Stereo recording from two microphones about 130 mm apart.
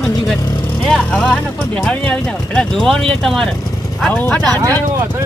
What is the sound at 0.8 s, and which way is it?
Speech, 5° left (ahead or behind).